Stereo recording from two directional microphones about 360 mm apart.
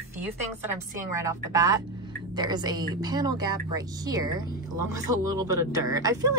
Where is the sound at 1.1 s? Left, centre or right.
Centre.